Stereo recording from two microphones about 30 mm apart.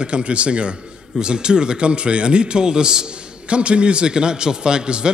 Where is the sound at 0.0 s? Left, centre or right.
Right.